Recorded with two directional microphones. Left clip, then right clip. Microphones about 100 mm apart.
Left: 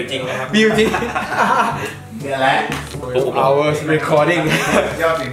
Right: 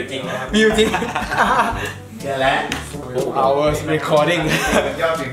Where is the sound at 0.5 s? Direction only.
15° right (ahead or behind).